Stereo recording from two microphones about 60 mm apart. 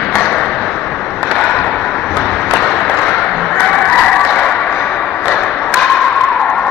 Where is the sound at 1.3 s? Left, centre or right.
Centre.